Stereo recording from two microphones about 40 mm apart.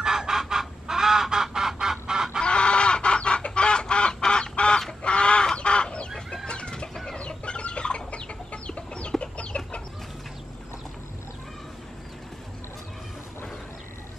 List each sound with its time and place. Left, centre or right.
0.0 s goose: centre
2.4 s chicken: left
4.2 s duck: left
5.0 s chicken: left